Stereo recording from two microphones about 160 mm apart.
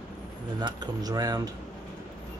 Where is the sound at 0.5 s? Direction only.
25° right (ahead or behind).